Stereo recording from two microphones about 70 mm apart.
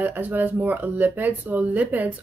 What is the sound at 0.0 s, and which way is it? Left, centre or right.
Speech, right.